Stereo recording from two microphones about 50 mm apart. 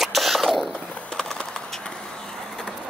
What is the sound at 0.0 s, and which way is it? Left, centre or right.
Cough, centre.